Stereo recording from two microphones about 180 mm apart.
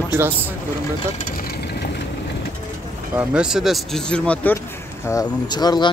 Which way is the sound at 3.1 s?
5° right (ahead or behind).